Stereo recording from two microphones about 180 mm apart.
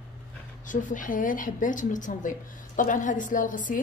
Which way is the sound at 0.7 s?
45° left (ahead or behind).